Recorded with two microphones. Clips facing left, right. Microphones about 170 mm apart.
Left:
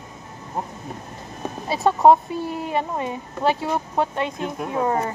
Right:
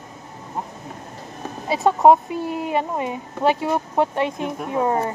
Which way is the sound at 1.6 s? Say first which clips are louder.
Right 1 dB; 15° right (ahead or behind).